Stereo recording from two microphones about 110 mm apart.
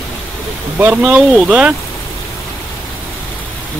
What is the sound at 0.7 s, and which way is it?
Speech, 15° right (ahead or behind).